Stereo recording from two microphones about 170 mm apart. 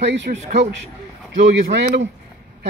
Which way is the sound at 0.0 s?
90° right.